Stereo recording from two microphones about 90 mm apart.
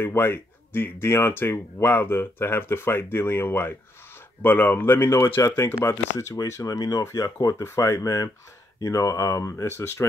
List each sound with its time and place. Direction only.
0.0 s speech: 25° left (ahead or behind)